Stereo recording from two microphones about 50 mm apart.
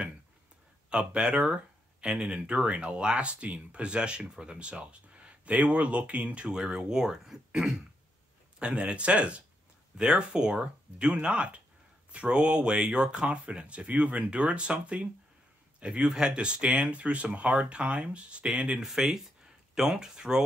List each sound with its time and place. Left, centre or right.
0.8 s speech: centre
8.5 s speech: right
18.8 s speech: centre